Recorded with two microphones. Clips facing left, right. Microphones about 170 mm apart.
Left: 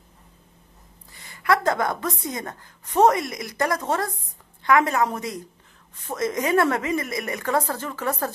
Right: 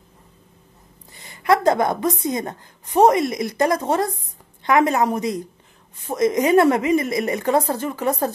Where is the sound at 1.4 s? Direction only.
20° right (ahead or behind).